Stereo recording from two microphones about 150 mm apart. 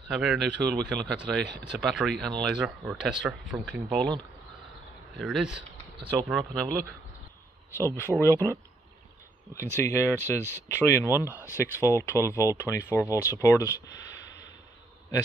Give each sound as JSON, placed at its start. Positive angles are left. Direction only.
{"t": 0.1, "sound": "speech", "side_deg": 0}
{"t": 5.1, "sound": "speech", "side_deg": 0}
{"t": 7.7, "sound": "speech", "side_deg": 15}
{"t": 9.8, "sound": "speech", "side_deg": 15}